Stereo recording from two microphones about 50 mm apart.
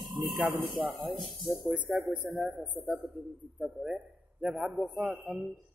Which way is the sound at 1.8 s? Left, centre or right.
Right.